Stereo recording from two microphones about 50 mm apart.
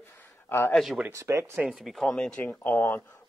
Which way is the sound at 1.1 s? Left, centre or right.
Right.